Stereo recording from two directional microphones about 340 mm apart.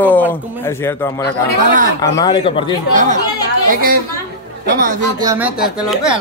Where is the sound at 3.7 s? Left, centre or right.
Right.